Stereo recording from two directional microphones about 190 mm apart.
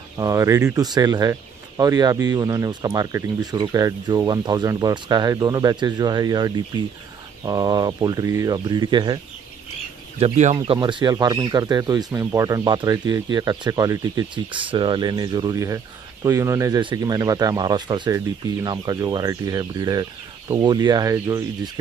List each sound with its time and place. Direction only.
0.2 s speech: 15° right (ahead or behind)
10.1 s speech: 35° right (ahead or behind); by 21.5 s 15° right (ahead or behind)